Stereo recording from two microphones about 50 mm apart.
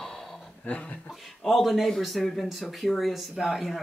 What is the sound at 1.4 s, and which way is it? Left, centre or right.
Speech, centre.